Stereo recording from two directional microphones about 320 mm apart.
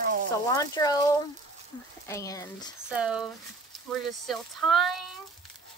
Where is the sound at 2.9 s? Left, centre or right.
Centre.